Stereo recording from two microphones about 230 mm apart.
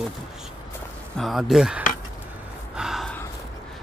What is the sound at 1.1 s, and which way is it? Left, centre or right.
Speech, centre.